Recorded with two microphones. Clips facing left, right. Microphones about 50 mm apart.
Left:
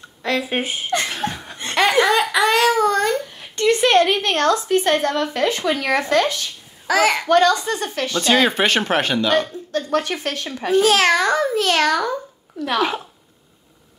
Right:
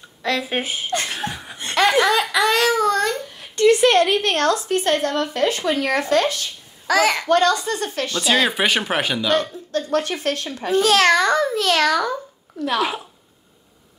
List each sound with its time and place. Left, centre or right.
0.2 s a child's voice: centre
1.1 s laughter: centre
3.5 s a sound: left
4.3 s a woman's voice: left
5.6 s speech: centre
5.9 s a woman's voice: left
6.9 s a child's voice: centre
8.2 s a child's voice: centre